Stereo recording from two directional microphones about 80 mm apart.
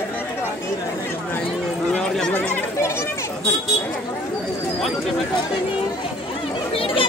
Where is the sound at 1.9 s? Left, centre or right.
Centre.